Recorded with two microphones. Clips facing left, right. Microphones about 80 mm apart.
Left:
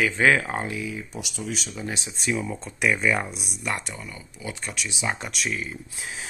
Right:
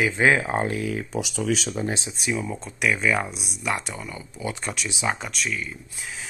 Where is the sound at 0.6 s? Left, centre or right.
Right.